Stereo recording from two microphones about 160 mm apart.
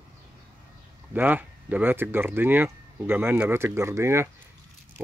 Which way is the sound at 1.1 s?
10° right (ahead or behind).